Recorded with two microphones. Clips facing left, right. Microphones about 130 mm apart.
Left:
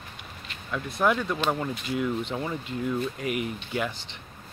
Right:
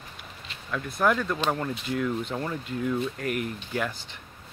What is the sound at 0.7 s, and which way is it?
Speech, 5° left (ahead or behind).